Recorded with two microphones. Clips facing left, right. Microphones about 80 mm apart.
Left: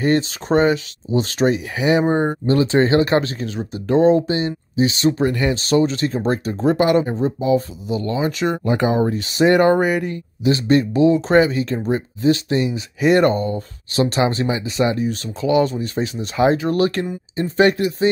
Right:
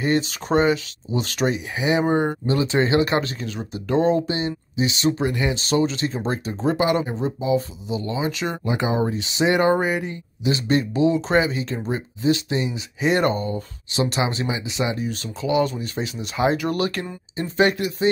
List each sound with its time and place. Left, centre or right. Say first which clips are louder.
0.0 s speech: left 4 dB; left
2.0 s speech: left 2 dB; left
2.4 s speech: left 5 dB; left
5.3 s speech: left 4 dB; left
5.6 s speech: left 4 dB; left
10.4 s speech: left 5 dB; left